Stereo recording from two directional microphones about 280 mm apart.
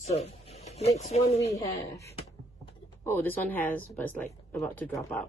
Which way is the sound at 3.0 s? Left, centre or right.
Centre.